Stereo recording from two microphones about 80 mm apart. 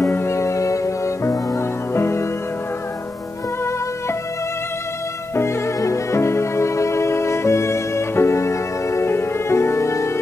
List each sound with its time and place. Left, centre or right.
0.0 s music: left
5.3 s music: left